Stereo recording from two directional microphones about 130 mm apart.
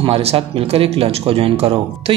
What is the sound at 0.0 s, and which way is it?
Speech, 50° right (ahead or behind).